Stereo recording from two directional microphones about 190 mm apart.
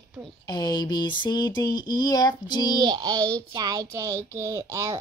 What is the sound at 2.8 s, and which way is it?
Speech, 20° right (ahead or behind).